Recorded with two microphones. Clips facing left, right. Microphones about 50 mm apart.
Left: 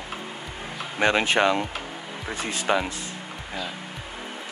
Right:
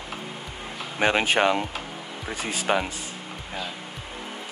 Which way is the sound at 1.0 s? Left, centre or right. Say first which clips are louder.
Even; centre.